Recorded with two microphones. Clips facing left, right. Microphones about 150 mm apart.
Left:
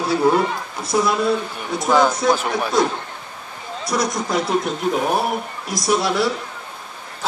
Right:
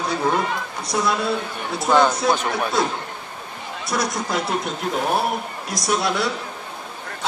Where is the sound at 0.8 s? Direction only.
Centre (ahead or behind).